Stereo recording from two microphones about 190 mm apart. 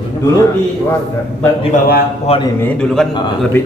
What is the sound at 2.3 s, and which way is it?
Speech, 35° left (ahead or behind).